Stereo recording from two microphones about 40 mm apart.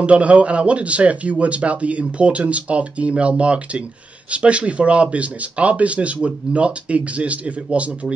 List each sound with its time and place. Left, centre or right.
0.0 s speech: right